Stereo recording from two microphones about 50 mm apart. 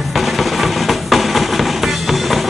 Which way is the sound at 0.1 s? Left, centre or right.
Centre.